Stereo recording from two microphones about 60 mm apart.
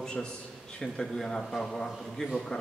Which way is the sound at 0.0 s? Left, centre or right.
Centre.